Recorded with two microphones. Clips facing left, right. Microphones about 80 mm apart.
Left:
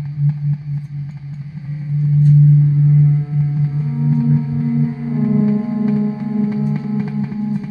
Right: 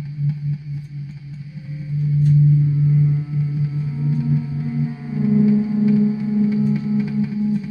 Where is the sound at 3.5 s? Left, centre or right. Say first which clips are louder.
Left 4 dB; left.